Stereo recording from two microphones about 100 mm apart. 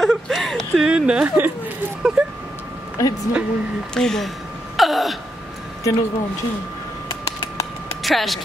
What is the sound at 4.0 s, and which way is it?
Speech, 5° left (ahead or behind).